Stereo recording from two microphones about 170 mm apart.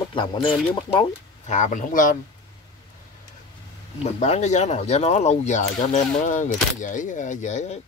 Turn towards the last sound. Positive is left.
turn(degrees=45)  # may be behind; listen again after turning